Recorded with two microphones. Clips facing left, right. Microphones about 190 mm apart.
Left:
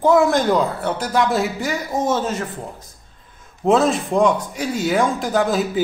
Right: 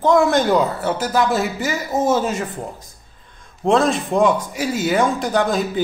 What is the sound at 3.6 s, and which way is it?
A man's voice, centre (ahead or behind).